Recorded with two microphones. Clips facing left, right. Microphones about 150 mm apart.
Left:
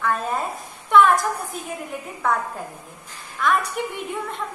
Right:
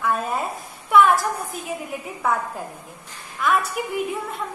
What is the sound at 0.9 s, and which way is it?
A woman's voice, 5° right (ahead or behind).